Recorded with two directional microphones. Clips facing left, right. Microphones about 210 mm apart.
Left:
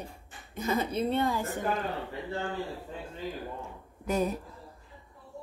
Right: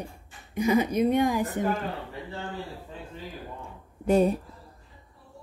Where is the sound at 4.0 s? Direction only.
30° right (ahead or behind).